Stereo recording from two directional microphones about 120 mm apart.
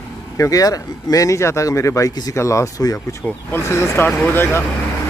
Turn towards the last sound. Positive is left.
turn(degrees=15)  # may be behind; listen again after turning